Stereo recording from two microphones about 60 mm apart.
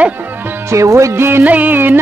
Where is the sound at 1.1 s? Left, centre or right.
Right.